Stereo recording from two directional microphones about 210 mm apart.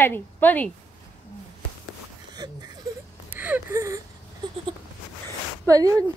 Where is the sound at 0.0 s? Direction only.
10° left (ahead or behind).